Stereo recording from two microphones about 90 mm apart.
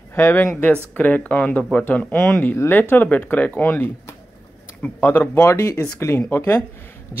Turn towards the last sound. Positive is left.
turn(degrees=25)  # may be behind; listen again after turning